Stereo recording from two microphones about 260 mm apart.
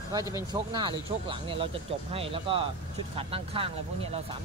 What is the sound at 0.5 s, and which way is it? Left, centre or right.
Speech, centre.